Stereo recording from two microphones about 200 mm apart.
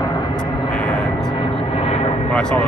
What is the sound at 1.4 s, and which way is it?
Vehicle, 30° left (ahead or behind).